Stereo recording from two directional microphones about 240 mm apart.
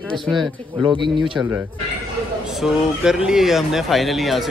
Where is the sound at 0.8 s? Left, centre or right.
Centre.